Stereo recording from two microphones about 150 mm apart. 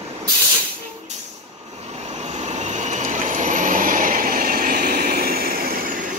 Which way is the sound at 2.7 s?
55° right (ahead or behind).